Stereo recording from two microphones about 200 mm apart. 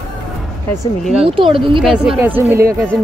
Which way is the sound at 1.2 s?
25° right (ahead or behind).